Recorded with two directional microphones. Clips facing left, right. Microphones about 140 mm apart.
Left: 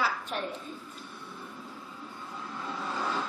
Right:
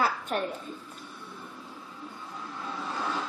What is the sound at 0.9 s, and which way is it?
Vehicle, centre (ahead or behind).